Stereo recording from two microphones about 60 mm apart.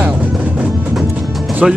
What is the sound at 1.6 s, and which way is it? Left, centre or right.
Speech, centre.